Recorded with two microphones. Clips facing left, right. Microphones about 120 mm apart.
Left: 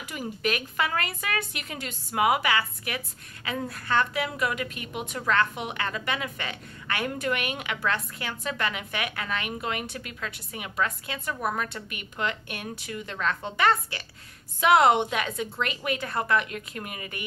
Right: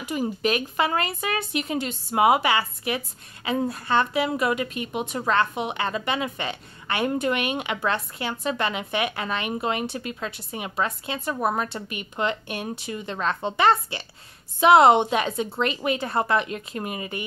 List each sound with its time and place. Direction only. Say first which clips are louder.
0.0 s a woman's voice: right 6 dB; 25° right (ahead or behind)